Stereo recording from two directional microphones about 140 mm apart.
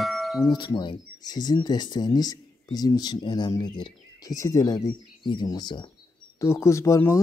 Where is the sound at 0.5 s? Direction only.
35° left (ahead or behind).